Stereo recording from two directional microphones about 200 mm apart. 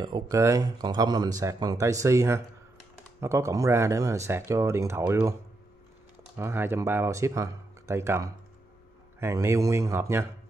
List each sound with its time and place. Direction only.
0.0 s speech: 20° right (ahead or behind)
6.3 s speech: 10° right (ahead or behind)